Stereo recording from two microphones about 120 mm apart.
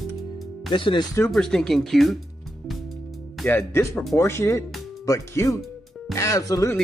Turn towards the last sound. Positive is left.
turn(degrees=30)  # may be behind; listen again after turning